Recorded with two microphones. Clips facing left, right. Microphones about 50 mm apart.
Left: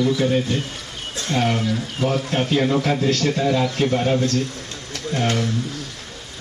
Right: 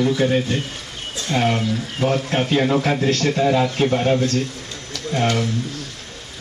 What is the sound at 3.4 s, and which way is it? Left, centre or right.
Speech, centre.